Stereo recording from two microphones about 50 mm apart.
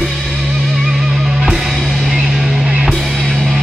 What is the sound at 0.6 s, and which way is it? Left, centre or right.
Music, centre.